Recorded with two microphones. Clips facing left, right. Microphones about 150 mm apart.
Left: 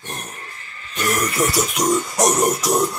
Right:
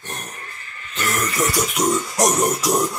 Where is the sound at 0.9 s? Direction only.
15° left (ahead or behind).